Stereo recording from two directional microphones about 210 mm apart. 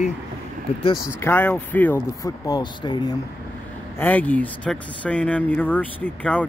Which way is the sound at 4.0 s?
5° left (ahead or behind).